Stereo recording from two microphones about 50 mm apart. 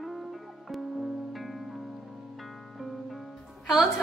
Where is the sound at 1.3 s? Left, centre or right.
Centre.